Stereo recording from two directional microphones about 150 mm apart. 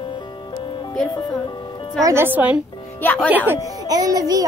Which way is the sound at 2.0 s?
20° right (ahead or behind).